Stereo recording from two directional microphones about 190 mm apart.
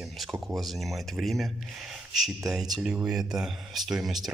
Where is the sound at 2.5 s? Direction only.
5° right (ahead or behind).